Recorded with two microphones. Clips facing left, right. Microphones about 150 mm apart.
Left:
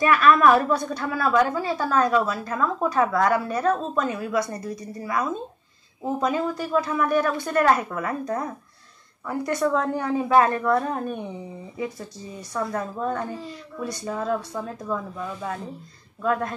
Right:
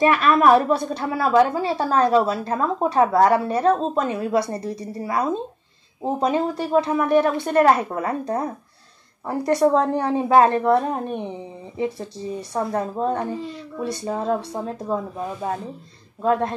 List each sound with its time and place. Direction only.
0.0 s a woman's voice: 25° right (ahead or behind)